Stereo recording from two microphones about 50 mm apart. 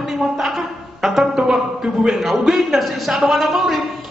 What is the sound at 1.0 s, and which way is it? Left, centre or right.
Speech, centre.